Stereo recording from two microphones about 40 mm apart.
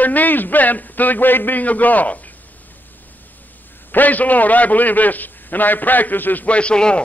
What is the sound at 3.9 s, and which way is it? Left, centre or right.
A man's voice, left.